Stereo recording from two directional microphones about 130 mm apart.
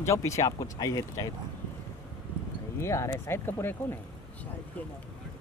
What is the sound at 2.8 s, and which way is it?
Speech, 20° left (ahead or behind).